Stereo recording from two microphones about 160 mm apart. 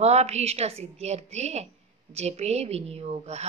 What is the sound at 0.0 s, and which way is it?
A woman's voice, 40° right (ahead or behind).